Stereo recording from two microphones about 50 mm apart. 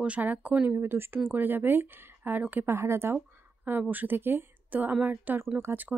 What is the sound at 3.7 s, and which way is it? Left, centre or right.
A woman's voice, right.